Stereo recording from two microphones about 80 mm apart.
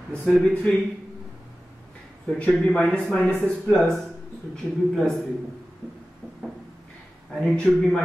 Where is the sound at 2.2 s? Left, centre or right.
Centre.